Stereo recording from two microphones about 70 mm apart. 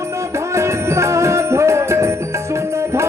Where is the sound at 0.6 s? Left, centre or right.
Right.